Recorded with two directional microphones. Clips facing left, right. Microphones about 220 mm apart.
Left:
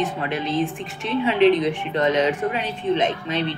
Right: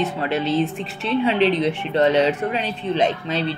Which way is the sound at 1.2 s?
35° right (ahead or behind).